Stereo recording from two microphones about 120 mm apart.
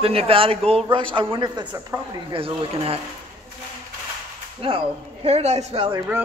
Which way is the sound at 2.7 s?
55° right (ahead or behind).